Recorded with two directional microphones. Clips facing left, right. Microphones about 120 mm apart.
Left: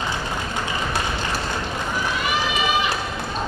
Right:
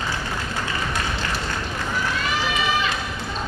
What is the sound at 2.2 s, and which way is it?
Run, 15° left (ahead or behind).